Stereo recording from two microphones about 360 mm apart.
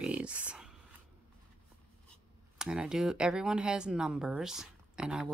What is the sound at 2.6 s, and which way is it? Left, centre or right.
Speech, centre.